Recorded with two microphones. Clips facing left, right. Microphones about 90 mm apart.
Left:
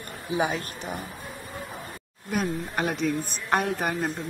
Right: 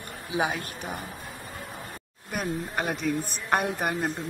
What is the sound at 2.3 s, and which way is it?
A woman's voice, centre (ahead or behind).